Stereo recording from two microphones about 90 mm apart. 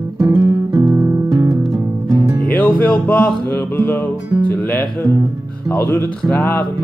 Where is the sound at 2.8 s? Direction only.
15° left (ahead or behind).